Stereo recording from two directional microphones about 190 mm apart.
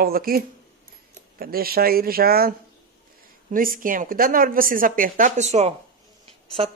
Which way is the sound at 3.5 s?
45° right (ahead or behind).